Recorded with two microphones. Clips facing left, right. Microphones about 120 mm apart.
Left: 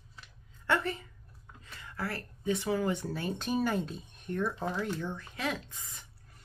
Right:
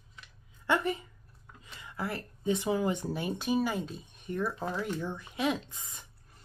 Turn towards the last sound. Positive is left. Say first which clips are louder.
# right 4 dB
turn(degrees=-15)  # may be behind; listen again after turning